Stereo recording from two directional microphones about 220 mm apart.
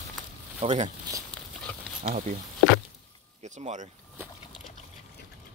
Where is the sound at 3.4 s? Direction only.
35° right (ahead or behind).